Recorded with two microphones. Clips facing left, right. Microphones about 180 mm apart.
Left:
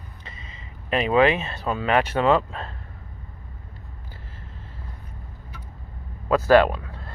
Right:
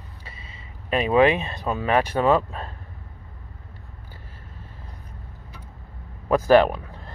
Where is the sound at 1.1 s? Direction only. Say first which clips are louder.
Right 1 dB; 15° right (ahead or behind).